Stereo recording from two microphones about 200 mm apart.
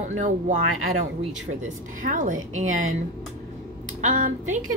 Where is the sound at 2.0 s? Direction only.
40° right (ahead or behind).